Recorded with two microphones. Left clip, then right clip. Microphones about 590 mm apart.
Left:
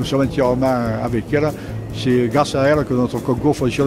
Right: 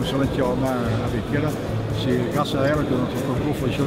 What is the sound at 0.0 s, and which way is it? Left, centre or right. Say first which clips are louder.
Speech: left 5 dB; left.